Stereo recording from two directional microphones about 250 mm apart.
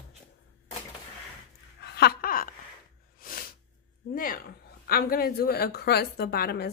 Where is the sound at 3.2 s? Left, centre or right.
Left.